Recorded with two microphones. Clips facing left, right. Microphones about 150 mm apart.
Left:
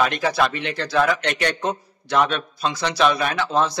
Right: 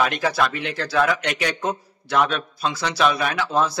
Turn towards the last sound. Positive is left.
turn(degrees=-5)  # may be behind; listen again after turning